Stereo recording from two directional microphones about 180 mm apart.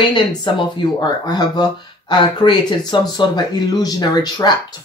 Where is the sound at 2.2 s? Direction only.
25° left (ahead or behind).